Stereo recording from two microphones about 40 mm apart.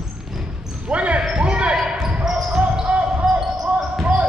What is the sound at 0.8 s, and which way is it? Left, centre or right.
Basketball bounce, right.